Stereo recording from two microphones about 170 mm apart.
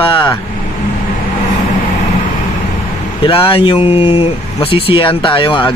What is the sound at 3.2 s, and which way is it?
Speech, 30° left (ahead or behind).